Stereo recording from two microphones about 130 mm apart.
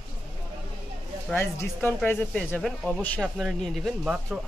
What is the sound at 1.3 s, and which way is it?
Speech, 15° left (ahead or behind).